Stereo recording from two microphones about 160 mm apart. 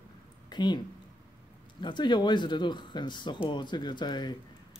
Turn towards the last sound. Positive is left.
turn(degrees=30)  # may be behind; listen again after turning